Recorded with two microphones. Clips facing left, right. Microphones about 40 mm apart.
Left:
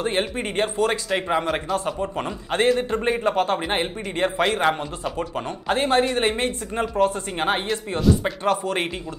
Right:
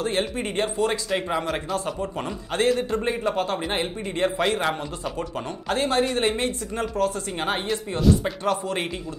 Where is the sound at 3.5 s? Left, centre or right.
Left.